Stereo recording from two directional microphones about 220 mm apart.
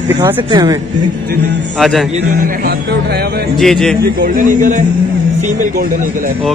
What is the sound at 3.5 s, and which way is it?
Speech, centre (ahead or behind).